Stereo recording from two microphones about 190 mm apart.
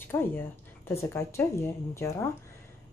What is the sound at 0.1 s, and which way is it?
A woman's voice, 10° left (ahead or behind).